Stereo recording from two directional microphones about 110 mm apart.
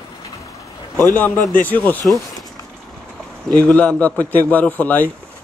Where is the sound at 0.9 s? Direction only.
15° left (ahead or behind).